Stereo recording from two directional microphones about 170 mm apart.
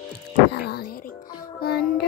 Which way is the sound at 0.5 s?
70° left (ahead or behind).